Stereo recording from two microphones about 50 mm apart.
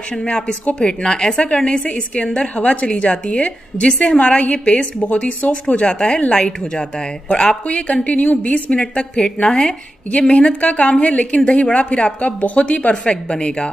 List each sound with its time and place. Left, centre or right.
0.1 s a woman's voice: centre
1.6 s a woman's voice: centre